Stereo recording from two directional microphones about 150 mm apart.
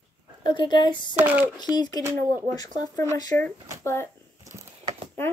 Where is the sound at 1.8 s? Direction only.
25° left (ahead or behind).